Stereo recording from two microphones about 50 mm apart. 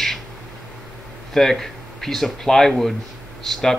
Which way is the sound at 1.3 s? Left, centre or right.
Centre.